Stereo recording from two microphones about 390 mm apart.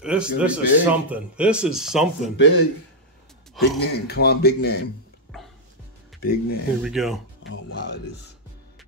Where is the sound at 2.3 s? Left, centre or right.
Left.